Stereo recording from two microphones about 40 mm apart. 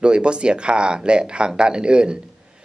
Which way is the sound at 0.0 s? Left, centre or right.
Right.